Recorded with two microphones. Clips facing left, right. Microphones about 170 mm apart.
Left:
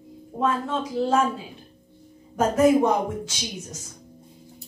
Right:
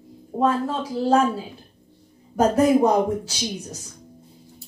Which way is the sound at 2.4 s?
35° right (ahead or behind).